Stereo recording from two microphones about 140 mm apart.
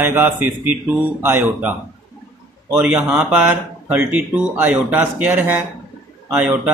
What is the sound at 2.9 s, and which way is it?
Speech, 10° right (ahead or behind).